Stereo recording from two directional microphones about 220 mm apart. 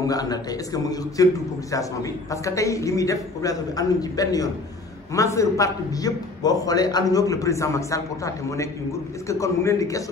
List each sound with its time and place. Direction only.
0.0 s a man's voice: 15° left (ahead or behind)